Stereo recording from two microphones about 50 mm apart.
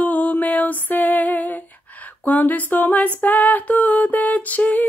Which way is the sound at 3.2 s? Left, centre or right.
Left.